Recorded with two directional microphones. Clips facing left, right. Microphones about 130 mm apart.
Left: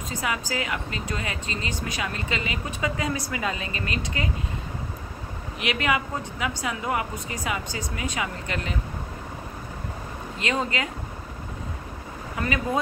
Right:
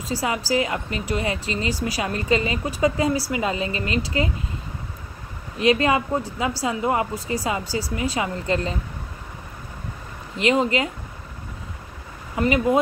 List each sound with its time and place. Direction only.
0.1 s a woman's voice: 35° right (ahead or behind)
5.6 s a woman's voice: 35° right (ahead or behind)
10.4 s a woman's voice: 25° right (ahead or behind)
12.4 s a woman's voice: 20° right (ahead or behind)